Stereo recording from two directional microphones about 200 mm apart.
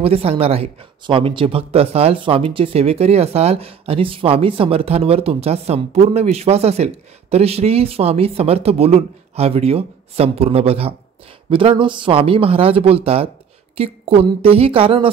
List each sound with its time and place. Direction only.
0.0 s speech: 30° right (ahead or behind)